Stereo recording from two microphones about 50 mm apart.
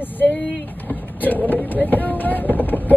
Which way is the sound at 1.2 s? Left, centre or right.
Left.